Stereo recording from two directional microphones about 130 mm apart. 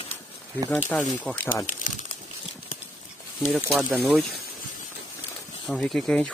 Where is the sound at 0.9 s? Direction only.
5° left (ahead or behind).